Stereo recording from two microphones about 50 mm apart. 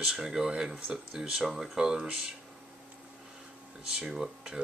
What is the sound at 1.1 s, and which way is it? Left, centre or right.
Speech, centre.